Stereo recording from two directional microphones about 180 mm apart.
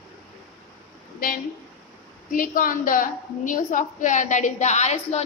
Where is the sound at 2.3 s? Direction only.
50° left (ahead or behind).